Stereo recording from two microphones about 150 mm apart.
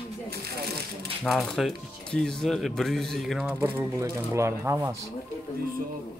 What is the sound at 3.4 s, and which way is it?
Speech, 15° right (ahead or behind).